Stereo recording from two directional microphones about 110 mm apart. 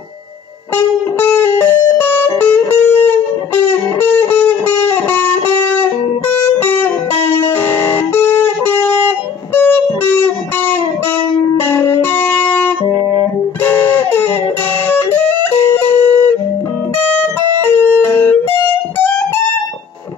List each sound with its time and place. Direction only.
0.7 s music: 20° left (ahead or behind)